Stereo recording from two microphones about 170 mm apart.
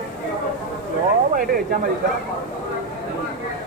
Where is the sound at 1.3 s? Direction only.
60° right (ahead or behind).